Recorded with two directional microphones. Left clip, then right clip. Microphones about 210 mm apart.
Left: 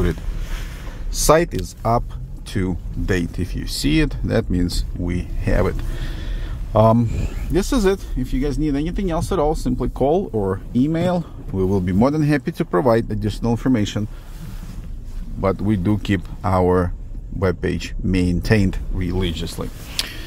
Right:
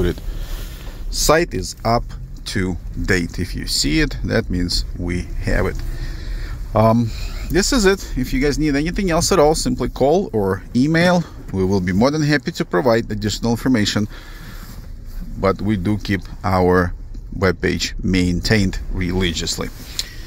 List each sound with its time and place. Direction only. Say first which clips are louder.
1.1 s speech: even; centre (ahead or behind)
15.4 s speech: right 2 dB; centre (ahead or behind)
20.0 s a sound: left 2 dB; 20° left (ahead or behind)